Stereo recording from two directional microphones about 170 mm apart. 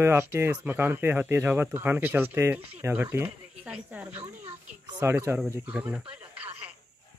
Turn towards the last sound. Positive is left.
turn(degrees=-10)  # may be behind; listen again after turning